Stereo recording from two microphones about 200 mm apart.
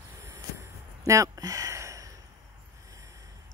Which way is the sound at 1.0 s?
15° right (ahead or behind).